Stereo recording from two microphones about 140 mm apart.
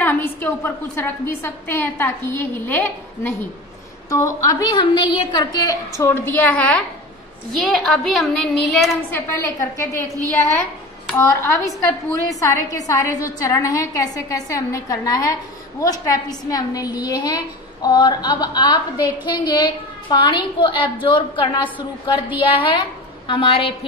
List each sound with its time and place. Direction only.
0.0 s a woman's voice: 15° left (ahead or behind)
9.4 s a woman's voice: 20° left (ahead or behind)
10.1 s a woman's voice: 25° right (ahead or behind)
11.1 s a woman's voice: 20° left (ahead or behind); by 23.9 s 40° left (ahead or behind)